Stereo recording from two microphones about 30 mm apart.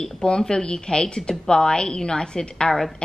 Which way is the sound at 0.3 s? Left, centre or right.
Left.